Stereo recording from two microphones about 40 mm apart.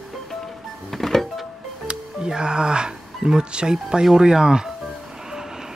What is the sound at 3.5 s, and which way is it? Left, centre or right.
Speech, right.